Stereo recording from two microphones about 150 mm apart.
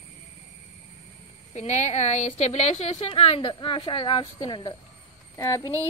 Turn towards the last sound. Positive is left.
turn(degrees=20)  # may be behind; listen again after turning